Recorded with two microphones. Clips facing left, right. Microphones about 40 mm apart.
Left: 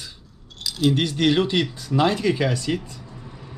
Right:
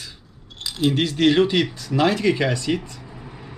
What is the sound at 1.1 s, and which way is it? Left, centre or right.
Speech, centre.